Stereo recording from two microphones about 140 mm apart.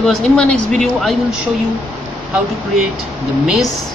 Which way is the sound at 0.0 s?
5° left (ahead or behind).